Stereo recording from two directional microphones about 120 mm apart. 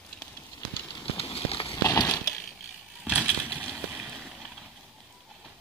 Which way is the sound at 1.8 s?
30° left (ahead or behind).